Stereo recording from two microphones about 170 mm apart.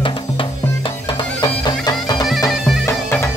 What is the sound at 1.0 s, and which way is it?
Bagpipes, 25° left (ahead or behind).